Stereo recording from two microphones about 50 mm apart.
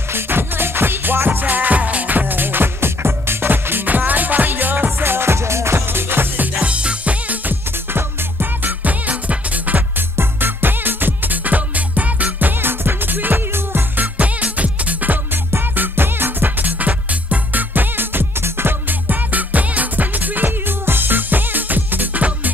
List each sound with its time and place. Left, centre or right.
0.1 s music: right
6.4 s music: right
7.9 s music: right
10.1 s music: right
15.5 s music: right